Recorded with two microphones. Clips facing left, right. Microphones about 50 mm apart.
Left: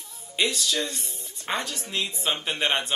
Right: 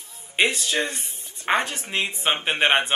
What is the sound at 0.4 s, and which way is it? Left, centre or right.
Speech, right.